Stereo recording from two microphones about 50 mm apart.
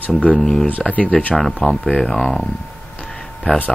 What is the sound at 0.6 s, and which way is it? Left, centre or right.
Speech, left.